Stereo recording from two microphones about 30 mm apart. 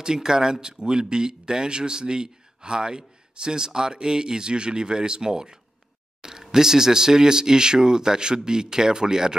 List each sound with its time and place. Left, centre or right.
0.0 s speech: right